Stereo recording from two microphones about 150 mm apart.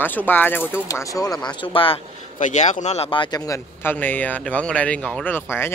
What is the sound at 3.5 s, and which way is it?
Speech, 15° left (ahead or behind).